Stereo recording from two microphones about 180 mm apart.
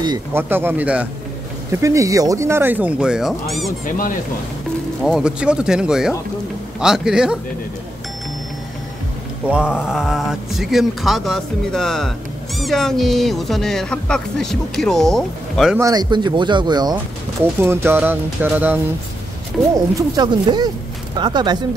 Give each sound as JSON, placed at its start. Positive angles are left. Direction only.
{"t": 0.3, "sound": "speech", "side_deg": -10}
{"t": 5.0, "sound": "speech", "side_deg": -5}
{"t": 9.5, "sound": "speech", "side_deg": -5}
{"t": 15.8, "sound": "speech", "side_deg": -20}
{"t": 17.6, "sound": "speech", "side_deg": -15}
{"t": 19.7, "sound": "speech", "side_deg": -20}